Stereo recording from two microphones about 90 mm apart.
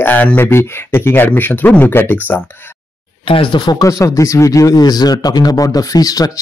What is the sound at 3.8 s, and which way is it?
Speech, 35° left (ahead or behind).